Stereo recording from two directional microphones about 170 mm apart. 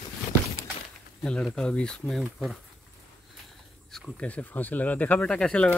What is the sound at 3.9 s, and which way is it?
Speech, 5° left (ahead or behind).